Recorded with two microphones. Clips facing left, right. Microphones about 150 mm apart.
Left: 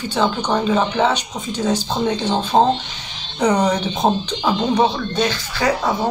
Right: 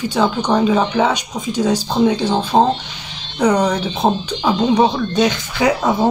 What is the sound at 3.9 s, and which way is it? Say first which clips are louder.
Speech: right 1 dB; 10° right (ahead or behind).